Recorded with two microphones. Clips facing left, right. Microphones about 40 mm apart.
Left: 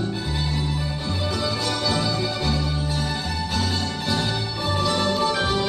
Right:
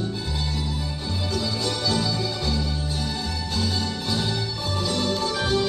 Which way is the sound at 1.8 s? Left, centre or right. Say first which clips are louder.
Left 1 dB; centre.